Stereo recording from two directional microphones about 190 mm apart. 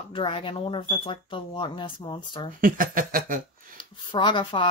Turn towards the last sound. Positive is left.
turn(degrees=25)  # may be behind; listen again after turning